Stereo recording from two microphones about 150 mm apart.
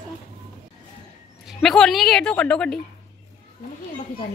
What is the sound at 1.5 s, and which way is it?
A woman's voice, centre (ahead or behind).